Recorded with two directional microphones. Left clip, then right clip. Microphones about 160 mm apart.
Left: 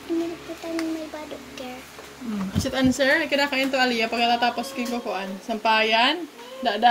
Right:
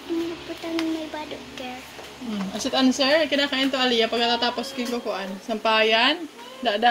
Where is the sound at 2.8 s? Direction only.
60° left (ahead or behind).